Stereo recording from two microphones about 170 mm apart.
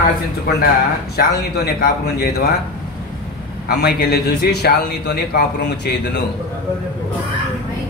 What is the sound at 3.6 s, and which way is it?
A man's voice, 70° left (ahead or behind).